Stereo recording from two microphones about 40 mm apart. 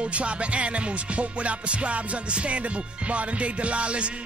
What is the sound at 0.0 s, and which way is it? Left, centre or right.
Music, right.